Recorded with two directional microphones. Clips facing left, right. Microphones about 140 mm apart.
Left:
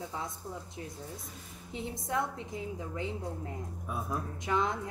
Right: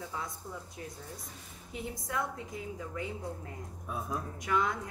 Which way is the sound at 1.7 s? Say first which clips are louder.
Left 3 dB; 25° left (ahead or behind).